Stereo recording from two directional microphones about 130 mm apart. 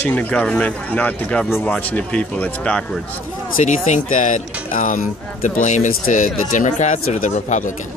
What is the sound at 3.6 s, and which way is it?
Speech, 70° left (ahead or behind).